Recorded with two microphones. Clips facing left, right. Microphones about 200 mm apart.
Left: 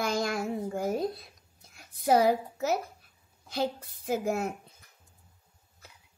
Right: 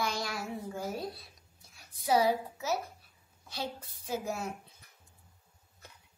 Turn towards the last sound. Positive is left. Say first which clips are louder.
# left 6 dB
turn(degrees=50)  # may be behind; listen again after turning